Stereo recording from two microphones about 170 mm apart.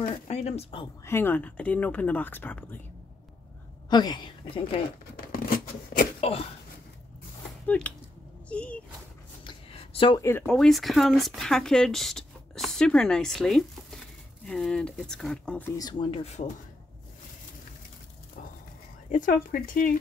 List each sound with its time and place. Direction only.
0.3 s speech: 40° left (ahead or behind)
1.0 s speech: 15° left (ahead or behind)
3.9 s speech: 25° left (ahead or behind)
5.1 s a sound: 55° left (ahead or behind)
6.2 s speech: 35° left (ahead or behind)
7.6 s speech: 10° left (ahead or behind)
8.5 s a sound: 5° left (ahead or behind)
9.4 s a sound: 30° left (ahead or behind)
10.2 s speech: 10° left (ahead or behind)
15.8 s speech: 25° left (ahead or behind)
19.0 s speech: 50° left (ahead or behind)